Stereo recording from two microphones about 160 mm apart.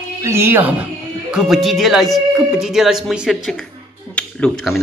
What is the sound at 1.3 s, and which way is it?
Speech, centre (ahead or behind).